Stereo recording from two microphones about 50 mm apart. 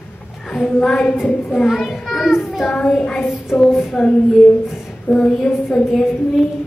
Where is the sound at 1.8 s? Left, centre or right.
Centre.